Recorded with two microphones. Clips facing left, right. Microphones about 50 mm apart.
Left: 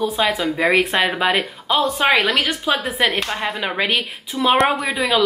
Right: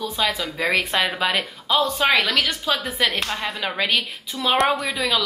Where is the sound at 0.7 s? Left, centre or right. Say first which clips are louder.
Left 3 dB; left.